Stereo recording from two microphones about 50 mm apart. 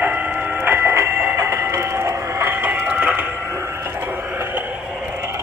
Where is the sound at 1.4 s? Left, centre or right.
Right.